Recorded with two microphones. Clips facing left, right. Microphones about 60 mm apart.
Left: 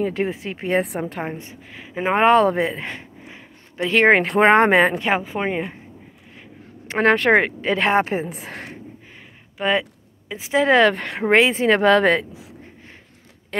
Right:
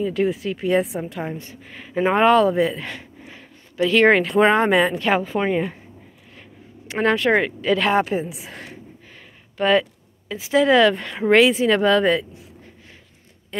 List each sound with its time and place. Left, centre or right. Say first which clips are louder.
0.1 s a woman's voice: right 3 dB; left
0.8 s speech: left 1 dB; left
2.1 s a woman's voice: left 1 dB; left
2.6 s a sound: right 2 dB; left
4.4 s a woman's voice: left 4 dB; left
4.9 s a woman's voice: right 1 dB; left
7.0 s speech: left 2 dB; left
7.7 s a woman's voice: even; left
9.6 s speech: right 3 dB; centre; by 11.0 s left
11.0 s speech: left 2 dB; left
11.2 s a woman's voice: right 1 dB; left
11.8 s speech: left 2 dB; left